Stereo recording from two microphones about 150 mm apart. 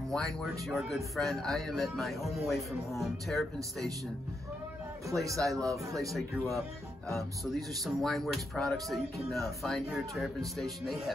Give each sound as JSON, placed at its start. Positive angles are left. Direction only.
{"t": 0.1, "sound": "speech", "side_deg": 0}
{"t": 5.2, "sound": "speech", "side_deg": -20}
{"t": 6.1, "sound": "speech", "side_deg": 0}